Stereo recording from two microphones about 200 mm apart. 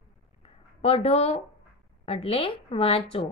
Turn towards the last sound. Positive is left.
turn(degrees=30)  # may be behind; listen again after turning